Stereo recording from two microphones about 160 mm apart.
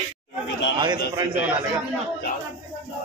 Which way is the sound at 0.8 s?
25° right (ahead or behind).